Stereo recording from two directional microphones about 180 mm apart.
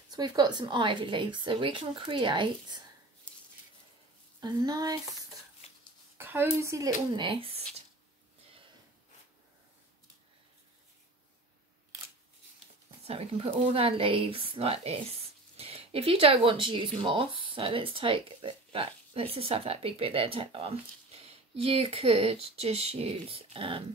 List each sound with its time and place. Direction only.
0.1 s a woman's voice: 25° right (ahead or behind)
4.4 s a woman's voice: 20° right (ahead or behind)
6.1 s speech: 10° right (ahead or behind); by 7.6 s 30° right (ahead or behind)
13.0 s speech: 35° right (ahead or behind)